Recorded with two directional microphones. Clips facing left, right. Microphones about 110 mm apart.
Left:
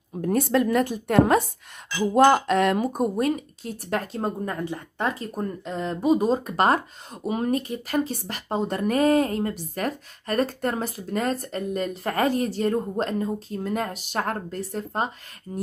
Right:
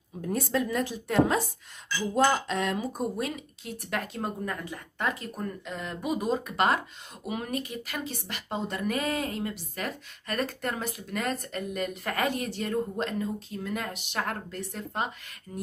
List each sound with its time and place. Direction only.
0.2 s a woman's voice: 60° left (ahead or behind); by 15.6 s 35° left (ahead or behind)